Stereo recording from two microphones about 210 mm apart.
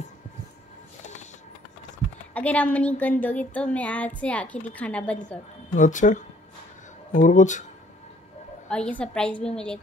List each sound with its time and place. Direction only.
2.3 s a sound: 5° left (ahead or behind)
5.8 s speech: 35° left (ahead or behind)
8.6 s a woman's voice: 5° left (ahead or behind)